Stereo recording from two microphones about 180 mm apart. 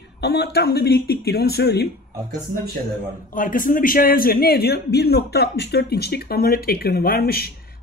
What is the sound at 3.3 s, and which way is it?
Speech, 50° left (ahead or behind).